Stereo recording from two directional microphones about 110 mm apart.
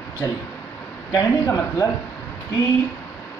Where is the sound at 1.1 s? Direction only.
35° left (ahead or behind).